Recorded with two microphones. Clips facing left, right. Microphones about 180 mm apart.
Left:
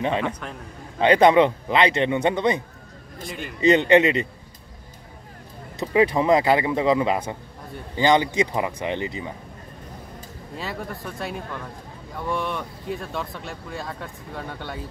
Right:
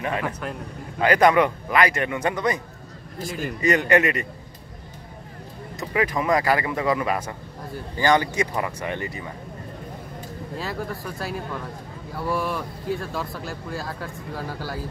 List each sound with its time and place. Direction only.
0.0 s a man's voice: 25° left (ahead or behind)
3.2 s speech: centre (ahead or behind)
3.6 s a man's voice: 25° left (ahead or behind)
5.9 s a man's voice: 25° left (ahead or behind)
10.5 s speech: centre (ahead or behind)